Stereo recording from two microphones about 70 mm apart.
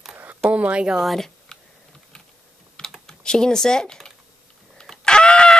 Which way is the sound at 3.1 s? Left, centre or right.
Centre.